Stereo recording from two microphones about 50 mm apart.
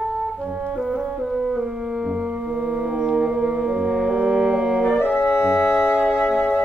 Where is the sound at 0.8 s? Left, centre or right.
Centre.